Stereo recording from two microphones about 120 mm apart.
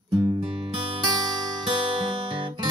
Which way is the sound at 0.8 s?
40° right (ahead or behind).